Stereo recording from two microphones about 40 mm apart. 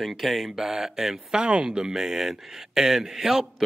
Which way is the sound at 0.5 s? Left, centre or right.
Centre.